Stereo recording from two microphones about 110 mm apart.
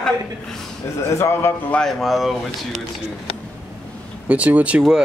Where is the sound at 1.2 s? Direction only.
25° left (ahead or behind).